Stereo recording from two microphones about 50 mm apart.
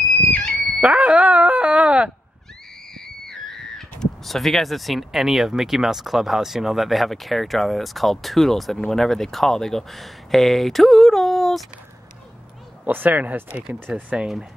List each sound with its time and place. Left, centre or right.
0.7 s speech: right
2.9 s speech: centre
12.8 s speech: right
13.7 s speech: right
14.1 s speech: centre